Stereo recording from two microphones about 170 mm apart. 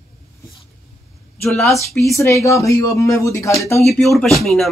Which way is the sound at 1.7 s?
15° left (ahead or behind).